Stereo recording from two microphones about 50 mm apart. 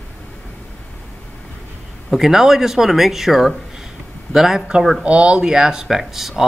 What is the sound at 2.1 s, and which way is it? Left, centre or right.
Speech, centre.